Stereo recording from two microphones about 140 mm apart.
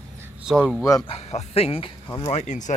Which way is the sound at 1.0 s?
45° left (ahead or behind).